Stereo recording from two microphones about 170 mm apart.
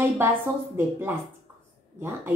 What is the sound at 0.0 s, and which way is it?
A woman's voice, 15° right (ahead or behind).